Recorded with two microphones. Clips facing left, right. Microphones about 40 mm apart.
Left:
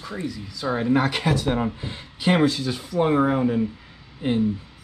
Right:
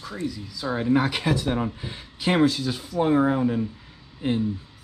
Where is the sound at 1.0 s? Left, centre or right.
Centre.